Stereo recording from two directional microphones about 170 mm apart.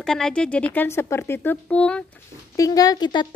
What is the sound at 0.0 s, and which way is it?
A woman's voice, 5° left (ahead or behind).